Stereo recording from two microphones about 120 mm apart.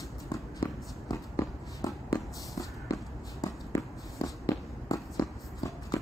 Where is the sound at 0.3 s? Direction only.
30° left (ahead or behind).